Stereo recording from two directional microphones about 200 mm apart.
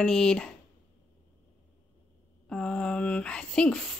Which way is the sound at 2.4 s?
5° left (ahead or behind).